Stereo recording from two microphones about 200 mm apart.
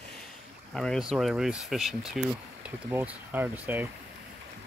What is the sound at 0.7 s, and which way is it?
Speech, centre (ahead or behind).